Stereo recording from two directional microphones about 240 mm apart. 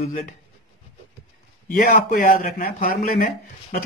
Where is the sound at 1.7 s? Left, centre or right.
Left.